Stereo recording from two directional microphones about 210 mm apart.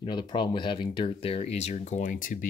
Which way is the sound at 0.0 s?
20° left (ahead or behind).